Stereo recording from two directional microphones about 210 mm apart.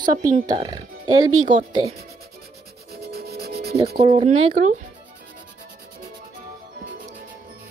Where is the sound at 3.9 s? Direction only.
25° right (ahead or behind).